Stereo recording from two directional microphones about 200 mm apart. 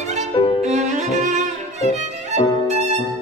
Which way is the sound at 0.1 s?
35° right (ahead or behind).